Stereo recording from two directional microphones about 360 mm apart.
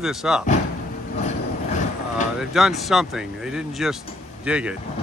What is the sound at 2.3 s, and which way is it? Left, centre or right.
Speech, centre.